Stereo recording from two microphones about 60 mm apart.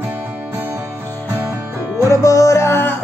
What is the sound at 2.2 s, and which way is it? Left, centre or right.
Music, left.